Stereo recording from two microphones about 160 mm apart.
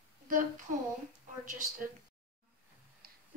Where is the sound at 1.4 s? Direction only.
55° right (ahead or behind).